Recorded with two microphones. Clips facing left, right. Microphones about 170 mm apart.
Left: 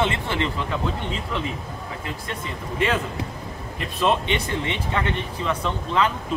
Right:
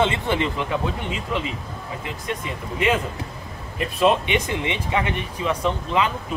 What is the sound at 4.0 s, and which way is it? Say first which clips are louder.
Speech: right 3 dB; 15° right (ahead or behind).